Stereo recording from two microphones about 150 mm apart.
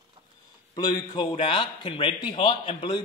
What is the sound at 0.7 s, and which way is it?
A man's voice, 30° left (ahead or behind).